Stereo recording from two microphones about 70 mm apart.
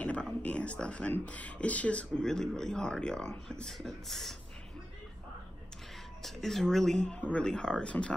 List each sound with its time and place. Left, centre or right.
0.0 s a sound: centre
1.1 s speech: centre
2.2 s speech: centre
6.2 s speech: centre